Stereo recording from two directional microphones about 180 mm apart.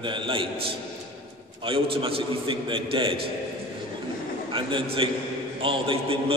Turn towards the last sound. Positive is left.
turn(degrees=-30)  # may be behind; listen again after turning